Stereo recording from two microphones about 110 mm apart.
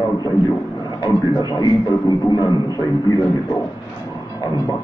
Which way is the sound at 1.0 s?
40° left (ahead or behind).